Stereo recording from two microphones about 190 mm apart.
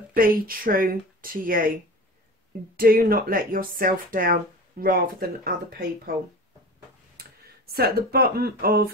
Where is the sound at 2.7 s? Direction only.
50° right (ahead or behind).